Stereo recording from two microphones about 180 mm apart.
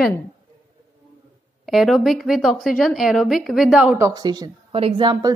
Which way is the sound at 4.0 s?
20° right (ahead or behind).